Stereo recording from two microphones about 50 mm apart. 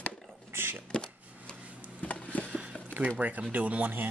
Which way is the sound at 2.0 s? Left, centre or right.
Left.